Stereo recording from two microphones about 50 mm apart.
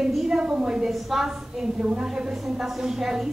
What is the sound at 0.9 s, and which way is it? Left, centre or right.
A woman's voice, centre.